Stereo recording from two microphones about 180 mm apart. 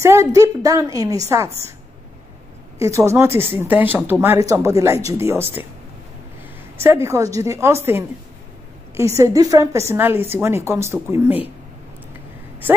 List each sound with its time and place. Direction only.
0.0 s a woman's voice: 15° right (ahead or behind)
2.8 s speech: 15° right (ahead or behind)
6.8 s speech: 15° right (ahead or behind)